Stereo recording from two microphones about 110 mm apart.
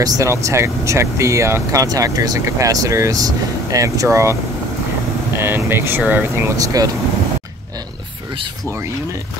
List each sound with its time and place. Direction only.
0.0 s speech: 30° right (ahead or behind)
5.4 s speech: 20° right (ahead or behind)